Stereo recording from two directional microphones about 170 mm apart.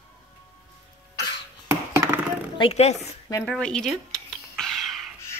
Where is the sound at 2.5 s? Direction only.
35° left (ahead or behind).